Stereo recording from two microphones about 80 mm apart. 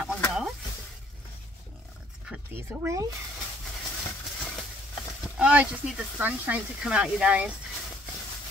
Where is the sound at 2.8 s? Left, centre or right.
Right.